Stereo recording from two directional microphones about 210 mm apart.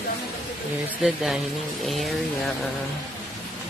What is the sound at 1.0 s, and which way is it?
Speech, centre (ahead or behind).